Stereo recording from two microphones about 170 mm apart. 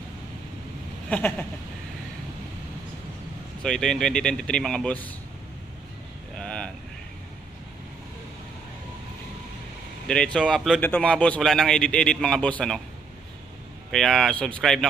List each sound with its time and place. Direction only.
1.1 s a sound: 10° left (ahead or behind)
3.6 s speech: 5° left (ahead or behind)
6.3 s vehicle: 5° left (ahead or behind)
10.0 s speech: 5° left (ahead or behind)
13.9 s speech: centre (ahead or behind)